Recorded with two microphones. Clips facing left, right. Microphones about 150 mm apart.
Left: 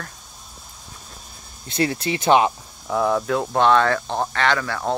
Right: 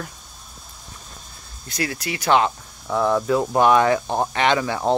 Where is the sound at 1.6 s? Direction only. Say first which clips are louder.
Left 5 dB; 25° left (ahead or behind).